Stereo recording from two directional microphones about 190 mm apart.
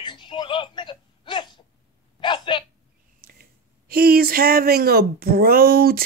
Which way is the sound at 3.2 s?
50° right (ahead or behind).